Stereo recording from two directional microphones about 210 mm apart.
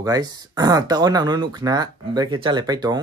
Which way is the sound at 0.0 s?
20° right (ahead or behind).